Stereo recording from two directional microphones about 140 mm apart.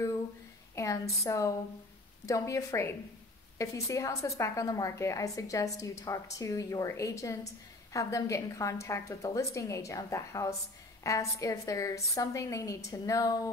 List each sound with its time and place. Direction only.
0.7 s a woman's voice: 20° left (ahead or behind)